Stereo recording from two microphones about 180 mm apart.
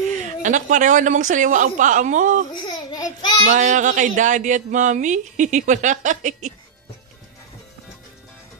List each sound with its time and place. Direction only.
0.1 s speech: 45° right (ahead or behind)
2.5 s a sound: 25° left (ahead or behind)
3.5 s speech: 45° right (ahead or behind)